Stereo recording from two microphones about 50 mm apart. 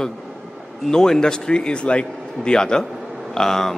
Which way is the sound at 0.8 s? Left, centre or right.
Centre.